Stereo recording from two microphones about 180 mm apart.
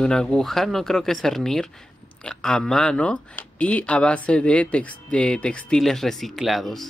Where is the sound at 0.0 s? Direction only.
5° left (ahead or behind).